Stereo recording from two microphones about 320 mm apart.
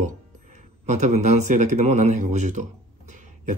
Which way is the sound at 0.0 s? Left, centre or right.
Right.